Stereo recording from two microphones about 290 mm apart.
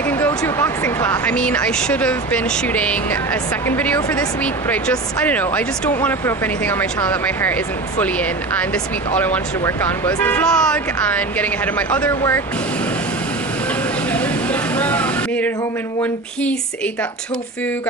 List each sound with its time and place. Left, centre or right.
0.1 s speech: centre
14.1 s vehicle: centre